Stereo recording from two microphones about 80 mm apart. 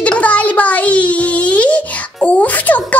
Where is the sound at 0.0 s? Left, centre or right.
Centre.